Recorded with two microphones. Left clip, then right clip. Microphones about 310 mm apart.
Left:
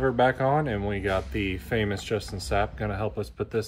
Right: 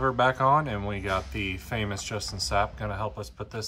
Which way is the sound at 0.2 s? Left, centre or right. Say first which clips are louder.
Right 2 dB; centre.